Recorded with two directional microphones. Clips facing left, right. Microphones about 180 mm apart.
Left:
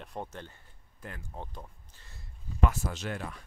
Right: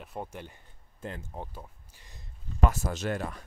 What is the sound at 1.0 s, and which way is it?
Speech, 25° right (ahead or behind).